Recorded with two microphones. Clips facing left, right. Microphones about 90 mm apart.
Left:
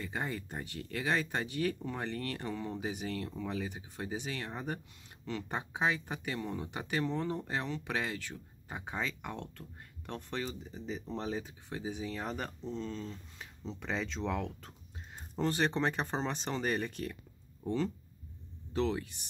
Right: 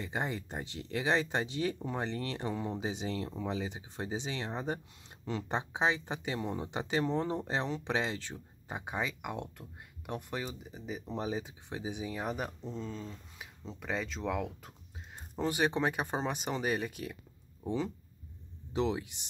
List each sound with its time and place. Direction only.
0.0 s speech: 20° right (ahead or behind)